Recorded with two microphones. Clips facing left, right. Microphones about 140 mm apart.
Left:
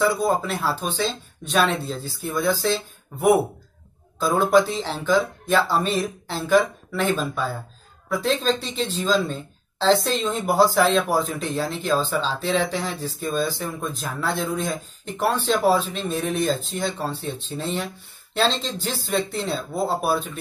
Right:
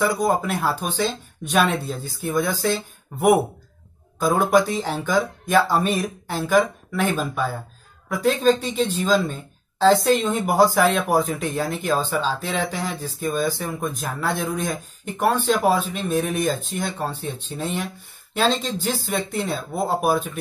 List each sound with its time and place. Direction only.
0.0 s speech: 15° right (ahead or behind)